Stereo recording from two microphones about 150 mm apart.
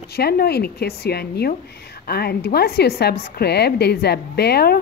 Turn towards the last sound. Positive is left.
turn(degrees=90)